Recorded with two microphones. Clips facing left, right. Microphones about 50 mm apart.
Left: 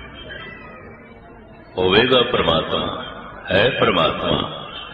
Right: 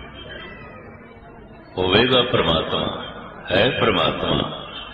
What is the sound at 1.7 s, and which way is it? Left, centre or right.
Speech, centre.